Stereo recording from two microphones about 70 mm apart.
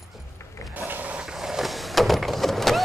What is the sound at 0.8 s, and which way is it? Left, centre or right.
Mechanisms, right.